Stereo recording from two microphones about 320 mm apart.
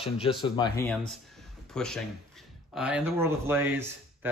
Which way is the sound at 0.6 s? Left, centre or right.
Centre.